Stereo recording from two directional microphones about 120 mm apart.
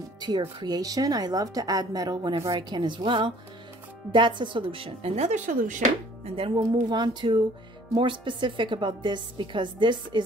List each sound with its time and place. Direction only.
0.2 s a woman's voice: 40° right (ahead or behind); by 5.8 s 90° right
6.2 s speech: 50° right (ahead or behind)
6.6 s a woman's voice: 35° right (ahead or behind)